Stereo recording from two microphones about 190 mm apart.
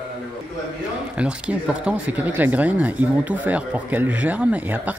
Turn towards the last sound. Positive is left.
turn(degrees=-10)  # may be behind; listen again after turning